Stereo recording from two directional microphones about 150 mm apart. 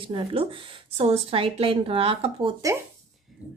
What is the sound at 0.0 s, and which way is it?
A woman's voice, 35° right (ahead or behind).